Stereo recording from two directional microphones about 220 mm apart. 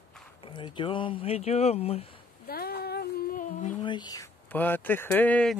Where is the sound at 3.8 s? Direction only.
20° left (ahead or behind).